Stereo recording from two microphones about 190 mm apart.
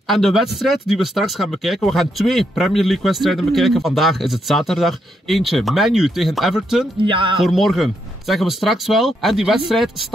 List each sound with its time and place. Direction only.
0.1 s speech: centre (ahead or behind)
7.0 s speech: 25° right (ahead or behind)
7.3 s speech: centre (ahead or behind)